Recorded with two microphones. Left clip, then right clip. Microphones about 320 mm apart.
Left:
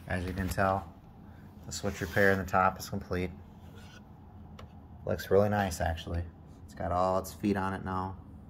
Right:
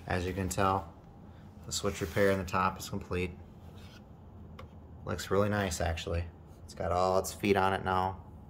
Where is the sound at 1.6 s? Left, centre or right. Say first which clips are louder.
Right 2 dB; centre.